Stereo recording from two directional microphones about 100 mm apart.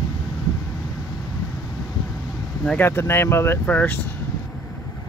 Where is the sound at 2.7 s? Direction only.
25° left (ahead or behind).